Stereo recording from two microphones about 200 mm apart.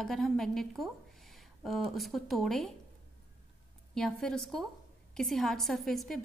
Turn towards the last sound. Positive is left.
turn(degrees=0)  # may be behind; listen again after turning